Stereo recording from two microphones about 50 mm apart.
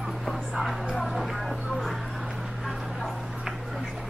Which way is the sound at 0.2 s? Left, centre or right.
Centre.